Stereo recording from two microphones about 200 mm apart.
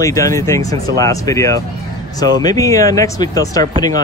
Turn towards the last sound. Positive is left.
turn(degrees=20)  # may be behind; listen again after turning